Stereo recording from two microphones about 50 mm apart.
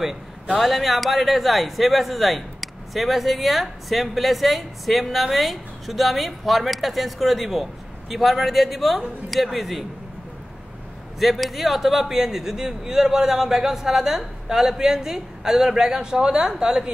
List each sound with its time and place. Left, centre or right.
0.0 s a man's voice: centre
11.1 s a man's voice: centre